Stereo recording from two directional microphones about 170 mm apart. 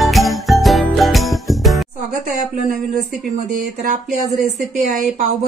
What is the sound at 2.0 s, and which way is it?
Speech, 50° right (ahead or behind).